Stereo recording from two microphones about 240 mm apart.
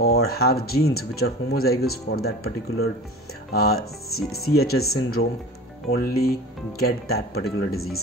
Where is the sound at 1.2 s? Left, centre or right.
Left.